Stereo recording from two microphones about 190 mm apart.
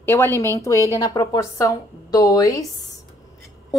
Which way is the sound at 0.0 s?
10° left (ahead or behind).